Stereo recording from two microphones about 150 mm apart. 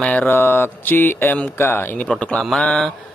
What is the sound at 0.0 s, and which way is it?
Speech, 10° left (ahead or behind).